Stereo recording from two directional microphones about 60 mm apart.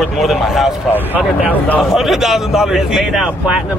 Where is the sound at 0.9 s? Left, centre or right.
Right.